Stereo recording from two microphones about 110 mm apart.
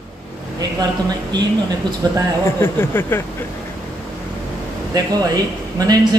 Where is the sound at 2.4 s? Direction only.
20° left (ahead or behind).